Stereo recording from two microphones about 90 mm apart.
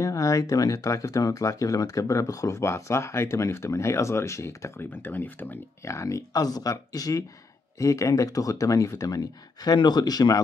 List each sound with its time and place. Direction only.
0.0 s speech: 40° left (ahead or behind)
5.0 s speech: 20° left (ahead or behind)
5.9 s speech: 35° left (ahead or behind)